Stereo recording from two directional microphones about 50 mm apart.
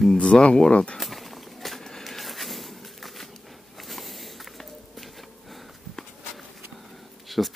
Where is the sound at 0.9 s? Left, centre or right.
Centre.